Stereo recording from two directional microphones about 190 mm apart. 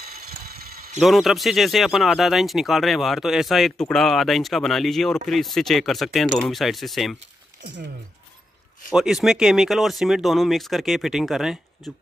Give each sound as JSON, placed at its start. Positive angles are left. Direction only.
{"t": 0.0, "sound": "a sound", "side_deg": -55}
{"t": 0.9, "sound": "speech", "side_deg": 0}
{"t": 8.9, "sound": "speech", "side_deg": -5}